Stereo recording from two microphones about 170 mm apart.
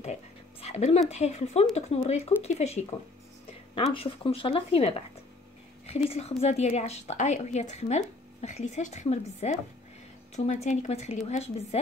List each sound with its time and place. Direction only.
0.0 s a sound: 40° left (ahead or behind)
1.8 s speech: 40° left (ahead or behind)
3.9 s speech: 35° left (ahead or behind)